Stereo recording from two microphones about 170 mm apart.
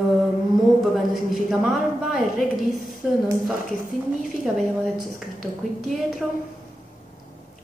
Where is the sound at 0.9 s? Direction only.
Centre (ahead or behind).